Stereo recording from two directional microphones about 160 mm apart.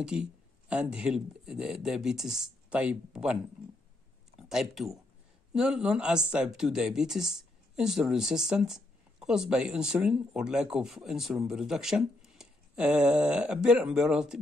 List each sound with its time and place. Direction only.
0.0 s speech: 5° right (ahead or behind)
4.4 s speech: centre (ahead or behind)